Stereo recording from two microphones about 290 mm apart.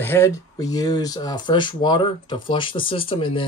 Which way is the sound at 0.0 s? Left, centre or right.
Centre.